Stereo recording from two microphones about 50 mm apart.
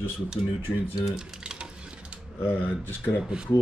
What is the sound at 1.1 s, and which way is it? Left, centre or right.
Typing, centre.